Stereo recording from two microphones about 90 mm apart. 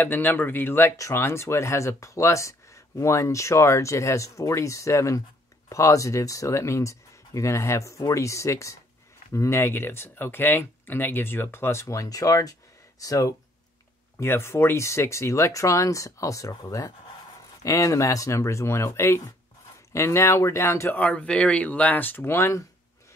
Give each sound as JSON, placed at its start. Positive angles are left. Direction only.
{"t": 0.0, "sound": "speech", "side_deg": 20}
{"t": 14.2, "sound": "speech", "side_deg": 30}
{"t": 20.9, "sound": "speech", "side_deg": 15}